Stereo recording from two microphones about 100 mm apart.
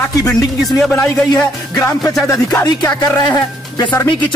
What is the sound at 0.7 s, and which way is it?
Speech, 5° left (ahead or behind).